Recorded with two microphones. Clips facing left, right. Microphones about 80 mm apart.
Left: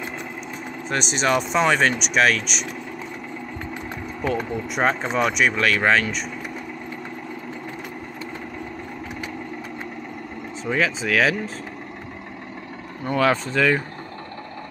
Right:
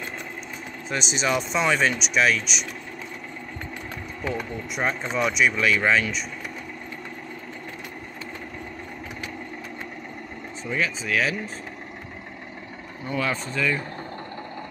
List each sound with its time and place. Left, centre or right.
0.8 s speech: left
4.8 s speech: left
10.7 s speech: left
13.0 s speech: left